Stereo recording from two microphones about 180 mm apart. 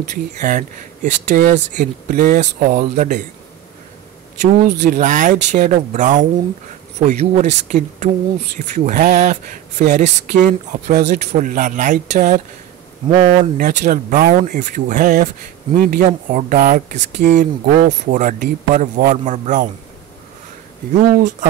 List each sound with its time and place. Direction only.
0.1 s speech: 45° right (ahead or behind)
4.4 s speech: 45° right (ahead or behind)
20.9 s speech: 45° right (ahead or behind)